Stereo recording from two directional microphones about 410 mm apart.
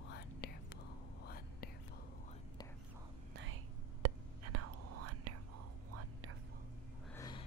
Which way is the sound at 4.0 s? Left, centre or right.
Right.